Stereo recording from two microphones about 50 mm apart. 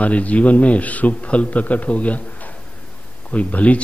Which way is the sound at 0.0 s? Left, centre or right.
Left.